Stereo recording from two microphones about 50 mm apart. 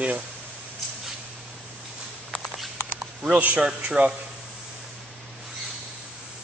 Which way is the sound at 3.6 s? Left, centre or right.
Centre.